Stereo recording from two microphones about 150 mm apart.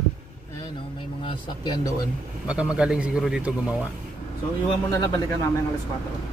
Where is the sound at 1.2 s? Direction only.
30° left (ahead or behind).